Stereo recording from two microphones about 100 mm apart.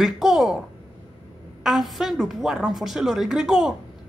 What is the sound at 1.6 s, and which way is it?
A woman's voice, 5° right (ahead or behind).